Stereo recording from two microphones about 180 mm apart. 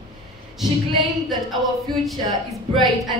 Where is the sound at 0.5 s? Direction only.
Centre (ahead or behind).